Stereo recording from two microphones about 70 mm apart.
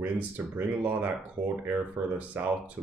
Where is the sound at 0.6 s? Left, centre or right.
Right.